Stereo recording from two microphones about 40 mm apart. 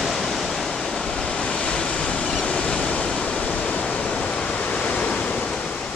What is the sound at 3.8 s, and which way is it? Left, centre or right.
Pink noise, left.